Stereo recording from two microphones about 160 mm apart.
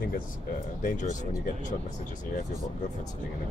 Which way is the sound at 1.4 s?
50° left (ahead or behind).